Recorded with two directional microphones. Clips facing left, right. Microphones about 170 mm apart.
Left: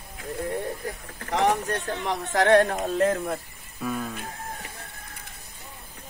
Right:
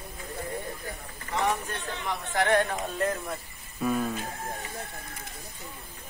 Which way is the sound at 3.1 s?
55° left (ahead or behind).